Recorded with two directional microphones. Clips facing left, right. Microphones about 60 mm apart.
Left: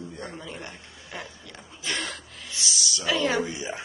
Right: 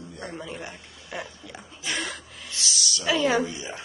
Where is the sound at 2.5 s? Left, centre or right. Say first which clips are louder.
Even; centre.